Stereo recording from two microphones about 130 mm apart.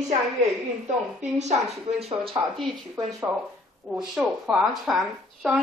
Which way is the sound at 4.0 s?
5° right (ahead or behind).